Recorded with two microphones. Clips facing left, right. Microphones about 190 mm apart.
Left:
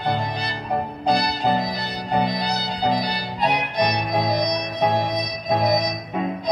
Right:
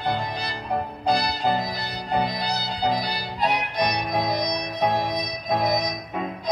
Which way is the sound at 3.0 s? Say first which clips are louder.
Left 2 dB; 20° left (ahead or behind).